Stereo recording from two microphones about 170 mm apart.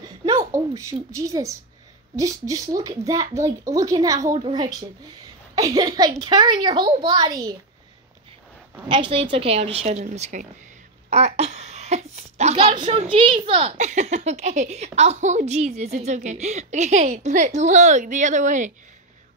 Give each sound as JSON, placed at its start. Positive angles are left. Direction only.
{"t": 0.4, "sound": "a child's voice", "side_deg": -20}
{"t": 8.8, "sound": "a child's voice", "side_deg": -30}
{"t": 11.1, "sound": "a sound", "side_deg": -40}
{"t": 12.7, "sound": "a child's voice", "side_deg": -30}